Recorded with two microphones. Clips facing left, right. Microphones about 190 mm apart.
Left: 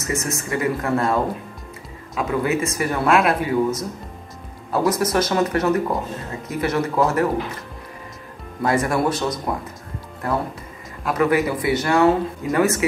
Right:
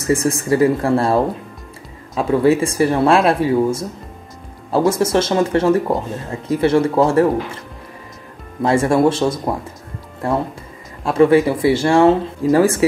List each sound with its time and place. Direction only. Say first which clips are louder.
0.0 s speech: right 8 dB; 30° right (ahead or behind)
8.6 s speech: right 6 dB; 25° right (ahead or behind)